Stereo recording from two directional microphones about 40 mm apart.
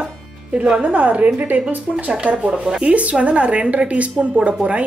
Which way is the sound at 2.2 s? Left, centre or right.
Right.